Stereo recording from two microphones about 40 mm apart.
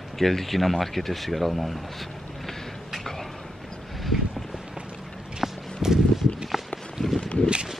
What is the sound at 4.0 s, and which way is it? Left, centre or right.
Vehicle, centre.